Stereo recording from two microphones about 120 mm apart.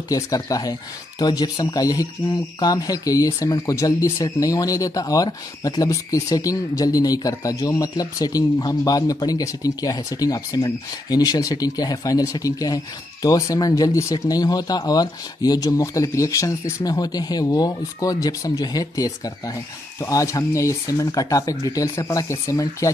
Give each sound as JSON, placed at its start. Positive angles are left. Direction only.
{"t": 0.1, "sound": "speech", "side_deg": 30}